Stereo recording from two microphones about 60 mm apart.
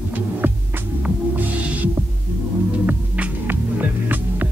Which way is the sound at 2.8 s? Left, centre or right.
Right.